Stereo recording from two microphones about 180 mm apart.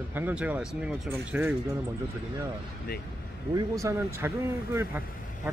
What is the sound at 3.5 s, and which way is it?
Speech, 15° right (ahead or behind).